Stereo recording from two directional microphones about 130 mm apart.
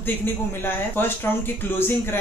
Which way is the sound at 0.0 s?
15° left (ahead or behind).